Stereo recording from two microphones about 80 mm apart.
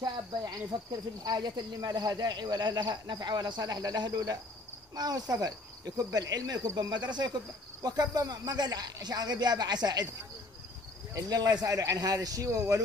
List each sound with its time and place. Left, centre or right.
0.7 s speech: right
1.2 s speech: right
4.9 s cricket: right
6.9 s speech: right
7.8 s speech: right
11.1 s cricket: right